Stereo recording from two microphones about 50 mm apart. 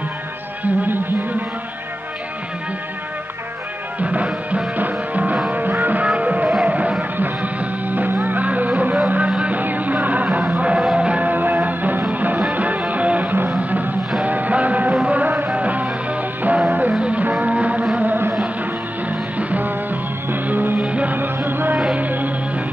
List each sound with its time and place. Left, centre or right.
0.7 s a sound: right
4.0 s music: right
6.0 s music: right
17.9 s a sound: right
19.0 s music: right
20.8 s music: right
21.2 s music: right
21.9 s music: right